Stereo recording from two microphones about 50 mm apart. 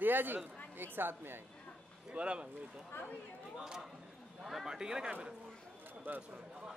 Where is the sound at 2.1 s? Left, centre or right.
Right.